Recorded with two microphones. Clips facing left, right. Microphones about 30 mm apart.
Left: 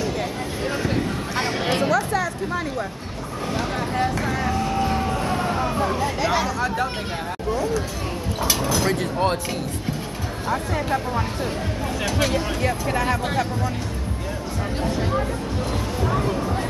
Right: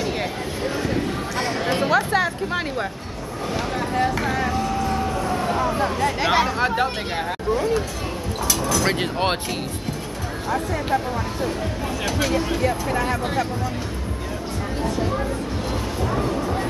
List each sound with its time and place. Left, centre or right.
0.8 s a sound: centre
1.9 s chatter: right
3.5 s speech: centre
4.8 s vehicle: centre
5.4 s vehicle: centre
6.1 s speech: right
8.5 s a sound: left
8.8 s speech: right
12.0 s speech: centre
16.0 s music: centre